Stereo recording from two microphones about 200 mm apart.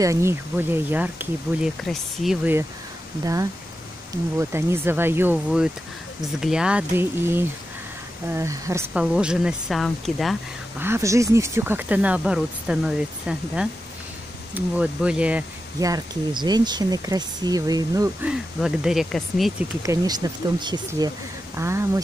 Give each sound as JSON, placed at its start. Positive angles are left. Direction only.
{"t": 0.0, "sound": "speech", "side_deg": -15}
{"t": 4.1, "sound": "speech", "side_deg": -15}
{"t": 9.0, "sound": "speech", "side_deg": -5}
{"t": 10.8, "sound": "speech", "side_deg": -15}
{"t": 15.8, "sound": "speech", "side_deg": -20}
{"t": 18.3, "sound": "speech", "side_deg": -5}
{"t": 19.8, "sound": "speech", "side_deg": -15}